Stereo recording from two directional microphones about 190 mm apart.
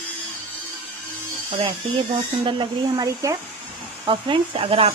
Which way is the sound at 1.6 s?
25° right (ahead or behind).